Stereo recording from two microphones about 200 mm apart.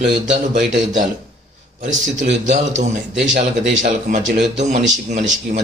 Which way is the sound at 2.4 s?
35° right (ahead or behind).